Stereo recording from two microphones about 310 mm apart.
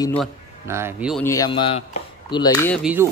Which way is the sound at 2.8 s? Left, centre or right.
Centre.